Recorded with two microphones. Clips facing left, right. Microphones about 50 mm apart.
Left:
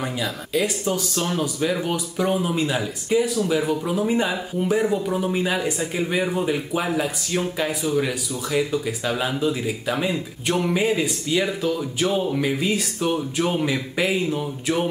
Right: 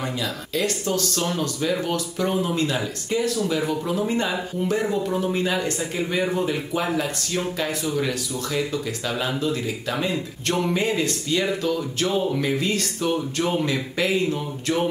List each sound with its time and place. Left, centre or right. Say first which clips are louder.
0.0 s speech: left 1 dB; centre